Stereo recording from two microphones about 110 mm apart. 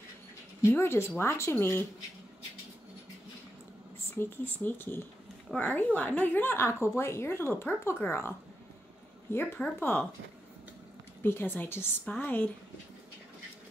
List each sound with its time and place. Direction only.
0.6 s a woman's voice: 25° left (ahead or behind)
4.1 s a woman's voice: 20° left (ahead or behind)
9.8 s a woman's voice: 20° left (ahead or behind)
11.2 s a woman's voice: 20° left (ahead or behind)